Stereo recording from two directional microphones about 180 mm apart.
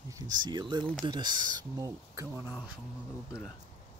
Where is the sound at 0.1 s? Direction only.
25° right (ahead or behind).